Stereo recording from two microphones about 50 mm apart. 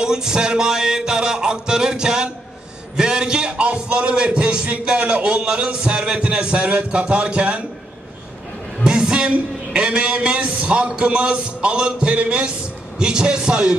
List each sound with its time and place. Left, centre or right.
0.0 s music: centre
3.0 s a man's voice: centre
8.8 s a sound: centre
9.7 s a man's voice: centre
13.0 s music: centre